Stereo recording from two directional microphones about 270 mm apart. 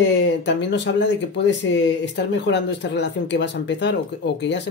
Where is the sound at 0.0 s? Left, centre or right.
Left.